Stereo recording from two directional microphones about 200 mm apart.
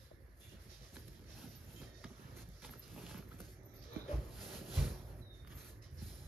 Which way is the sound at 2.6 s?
Centre (ahead or behind).